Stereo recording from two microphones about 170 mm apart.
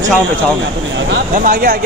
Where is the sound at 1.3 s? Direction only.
55° right (ahead or behind).